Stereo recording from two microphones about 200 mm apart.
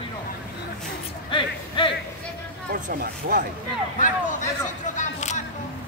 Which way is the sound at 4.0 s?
40° left (ahead or behind).